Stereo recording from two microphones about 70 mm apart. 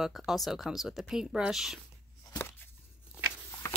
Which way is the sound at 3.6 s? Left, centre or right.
Left.